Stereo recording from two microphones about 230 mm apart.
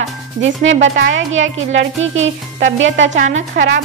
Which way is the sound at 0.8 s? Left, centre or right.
Right.